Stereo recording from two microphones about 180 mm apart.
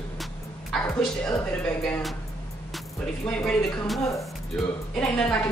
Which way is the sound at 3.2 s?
5° left (ahead or behind).